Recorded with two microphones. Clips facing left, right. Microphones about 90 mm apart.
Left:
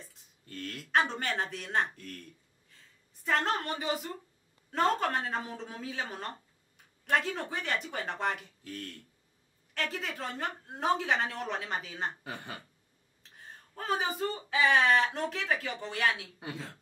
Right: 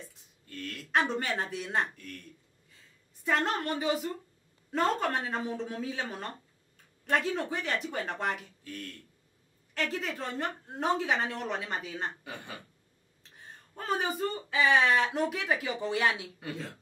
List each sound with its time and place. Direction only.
0.9 s a woman's voice: centre (ahead or behind)
3.3 s a woman's voice: centre (ahead or behind)
13.2 s a sound: centre (ahead or behind)
14.6 s speech: centre (ahead or behind); by 16.3 s 15° right (ahead or behind)
16.3 s a woman's voice: 20° left (ahead or behind)